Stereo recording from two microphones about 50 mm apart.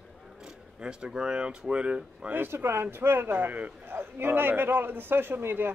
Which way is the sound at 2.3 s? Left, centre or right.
Right.